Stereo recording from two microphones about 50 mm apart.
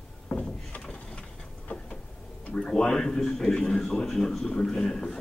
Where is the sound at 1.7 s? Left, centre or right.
Left.